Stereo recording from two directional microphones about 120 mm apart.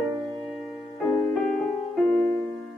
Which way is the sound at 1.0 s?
15° left (ahead or behind).